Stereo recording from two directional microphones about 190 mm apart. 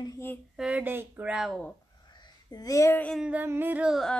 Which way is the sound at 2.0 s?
20° left (ahead or behind).